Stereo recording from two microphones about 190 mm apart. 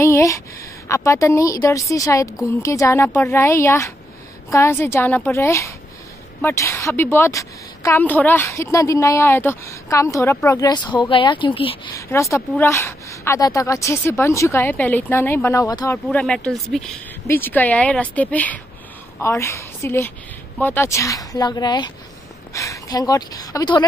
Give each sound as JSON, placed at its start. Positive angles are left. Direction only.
{"t": 0.0, "sound": "a sound", "side_deg": 15}
{"t": 0.8, "sound": "a woman's voice", "side_deg": 15}
{"t": 11.9, "sound": "a woman's voice", "side_deg": 15}
{"t": 16.1, "sound": "a woman's voice", "side_deg": 5}